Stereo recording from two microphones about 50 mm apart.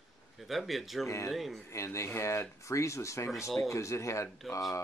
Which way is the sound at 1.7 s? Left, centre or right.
Left.